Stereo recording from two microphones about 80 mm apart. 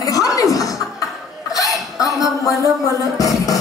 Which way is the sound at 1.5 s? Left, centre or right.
Left.